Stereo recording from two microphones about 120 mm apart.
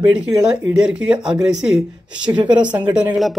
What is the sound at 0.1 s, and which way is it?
Speech, 5° right (ahead or behind).